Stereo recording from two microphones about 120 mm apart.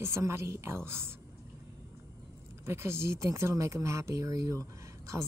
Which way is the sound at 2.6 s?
20° right (ahead or behind).